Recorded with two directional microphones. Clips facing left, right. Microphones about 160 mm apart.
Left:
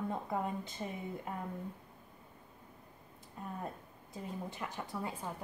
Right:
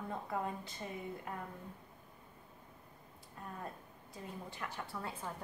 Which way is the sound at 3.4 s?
20° left (ahead or behind).